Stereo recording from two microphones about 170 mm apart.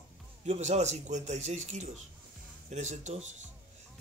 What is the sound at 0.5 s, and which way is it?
Speech, 40° right (ahead or behind).